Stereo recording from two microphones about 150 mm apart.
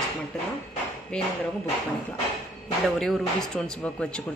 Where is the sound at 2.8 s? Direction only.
Centre (ahead or behind).